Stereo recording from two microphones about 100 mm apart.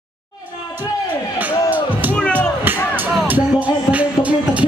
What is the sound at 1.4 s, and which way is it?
Music, 15° right (ahead or behind).